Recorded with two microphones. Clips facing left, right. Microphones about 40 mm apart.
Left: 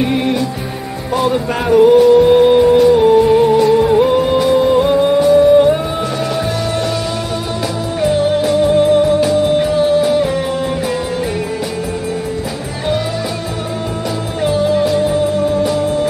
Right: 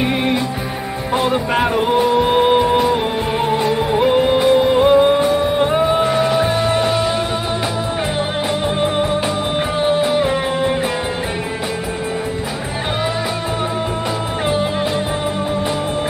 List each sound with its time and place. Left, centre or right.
0.0 s music: centre
8.0 s music: right
14.4 s music: right